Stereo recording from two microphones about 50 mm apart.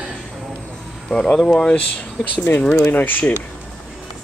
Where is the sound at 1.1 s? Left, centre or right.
Centre.